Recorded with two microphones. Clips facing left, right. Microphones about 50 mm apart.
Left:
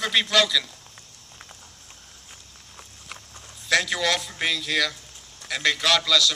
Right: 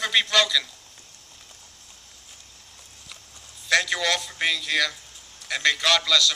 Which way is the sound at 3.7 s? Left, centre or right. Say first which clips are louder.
Even; centre.